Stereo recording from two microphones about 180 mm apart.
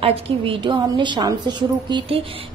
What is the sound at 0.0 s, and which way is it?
A woman's voice, 30° right (ahead or behind).